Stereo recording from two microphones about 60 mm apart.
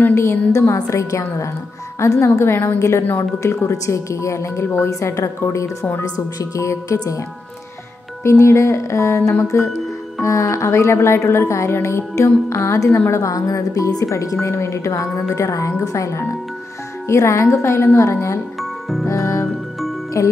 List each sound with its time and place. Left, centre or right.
0.0 s a woman's voice: left
0.5 s a woman's voice: left
6.0 s speech: left
8.2 s a woman's voice: left
13.1 s speech: left
14.4 s a woman's voice: left
18.6 s music: centre
19.0 s music: left
20.2 s speech: left